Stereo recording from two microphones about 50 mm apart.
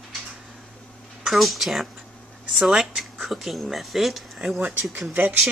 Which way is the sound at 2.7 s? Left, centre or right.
Centre.